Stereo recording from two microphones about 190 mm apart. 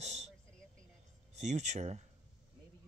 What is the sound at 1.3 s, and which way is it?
Speech, 35° right (ahead or behind).